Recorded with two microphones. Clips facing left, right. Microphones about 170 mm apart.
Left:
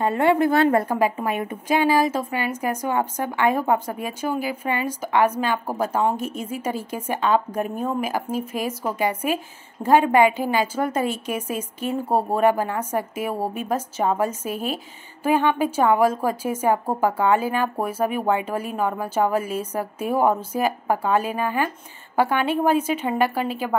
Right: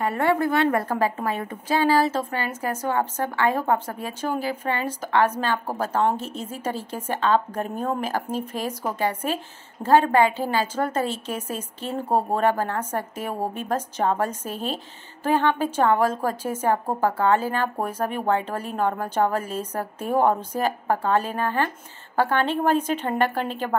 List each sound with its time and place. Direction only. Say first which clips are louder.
0.0 s a woman's voice: left 3 dB; 20° left (ahead or behind)
0.5 s a woman's voice: left 3 dB; 30° left (ahead or behind)
0.8 s a woman's voice: left 2 dB; 15° left (ahead or behind)